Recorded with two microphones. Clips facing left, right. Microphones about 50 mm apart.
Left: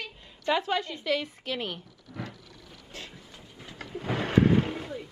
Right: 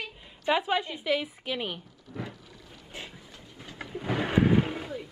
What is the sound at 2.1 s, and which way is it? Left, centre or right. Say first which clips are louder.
Vehicle: right 1 dB; centre.